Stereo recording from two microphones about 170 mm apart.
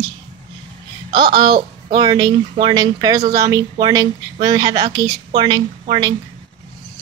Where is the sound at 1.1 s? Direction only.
25° right (ahead or behind).